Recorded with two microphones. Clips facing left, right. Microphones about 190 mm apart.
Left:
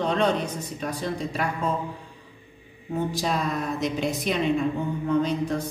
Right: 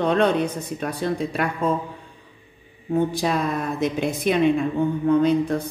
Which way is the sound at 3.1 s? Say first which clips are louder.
Right 3 dB; 55° right (ahead or behind).